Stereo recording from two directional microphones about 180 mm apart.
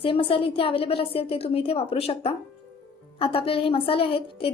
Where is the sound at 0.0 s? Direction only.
30° left (ahead or behind).